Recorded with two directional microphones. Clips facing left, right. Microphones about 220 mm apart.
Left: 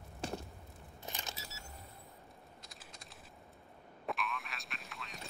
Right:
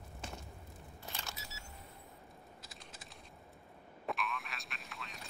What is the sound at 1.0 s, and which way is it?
Vehicle, 20° left (ahead or behind).